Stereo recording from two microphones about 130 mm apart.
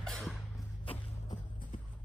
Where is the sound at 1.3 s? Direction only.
75° left (ahead or behind).